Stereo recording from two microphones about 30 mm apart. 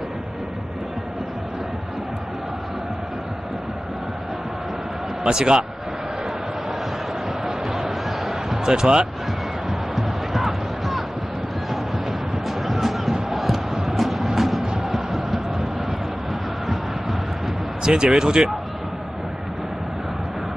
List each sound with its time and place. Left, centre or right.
5.2 s speech: right
7.4 s a sound: centre
8.6 s speech: right
9.7 s music: centre
12.7 s a sound: centre
13.3 s crowd: centre
13.8 s music: centre
17.8 s speech: right